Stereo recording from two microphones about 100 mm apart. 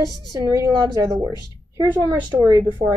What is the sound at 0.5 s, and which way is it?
Speech, 40° right (ahead or behind).